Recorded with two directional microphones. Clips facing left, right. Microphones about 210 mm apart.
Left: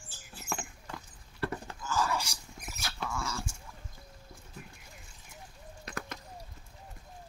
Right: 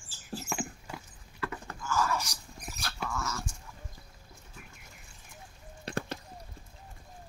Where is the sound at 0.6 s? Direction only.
10° right (ahead or behind).